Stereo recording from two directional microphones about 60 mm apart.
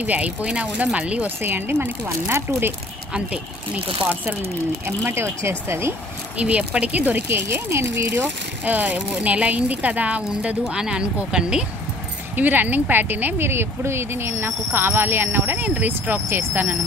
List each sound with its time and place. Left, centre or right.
0.0 s speech: right
1.4 s speech: right
5.0 s speech: right
6.3 s speech: right
7.2 s speech: right
8.2 s speech: right
12.4 s speech: right